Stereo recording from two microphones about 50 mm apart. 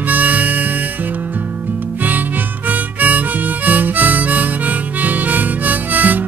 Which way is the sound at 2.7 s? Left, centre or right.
Right.